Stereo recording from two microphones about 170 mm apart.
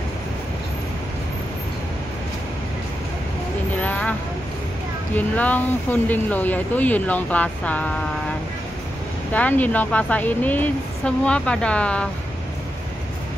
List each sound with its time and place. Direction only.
3.8 s vehicle: 10° left (ahead or behind)
5.1 s speech: 10° left (ahead or behind)
9.3 s speech: 10° left (ahead or behind)